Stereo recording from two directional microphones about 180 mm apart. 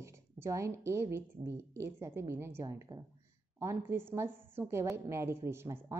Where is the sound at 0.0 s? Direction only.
15° right (ahead or behind).